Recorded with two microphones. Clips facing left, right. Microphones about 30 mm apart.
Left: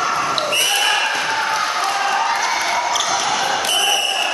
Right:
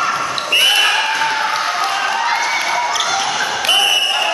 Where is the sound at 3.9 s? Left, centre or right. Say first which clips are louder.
Right 3 dB; right.